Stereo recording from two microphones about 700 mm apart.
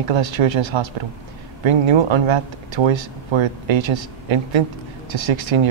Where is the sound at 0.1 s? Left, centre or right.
Right.